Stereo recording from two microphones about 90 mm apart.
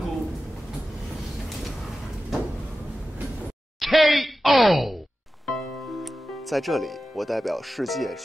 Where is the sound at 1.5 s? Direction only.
Centre (ahead or behind).